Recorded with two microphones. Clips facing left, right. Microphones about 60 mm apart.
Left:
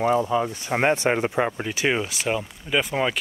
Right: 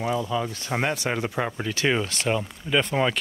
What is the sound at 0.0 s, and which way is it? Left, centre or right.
Speech, left.